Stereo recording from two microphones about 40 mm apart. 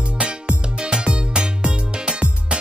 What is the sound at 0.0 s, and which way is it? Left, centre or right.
Music, right.